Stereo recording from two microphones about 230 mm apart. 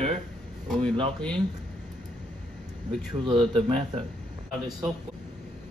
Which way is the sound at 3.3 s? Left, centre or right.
Right.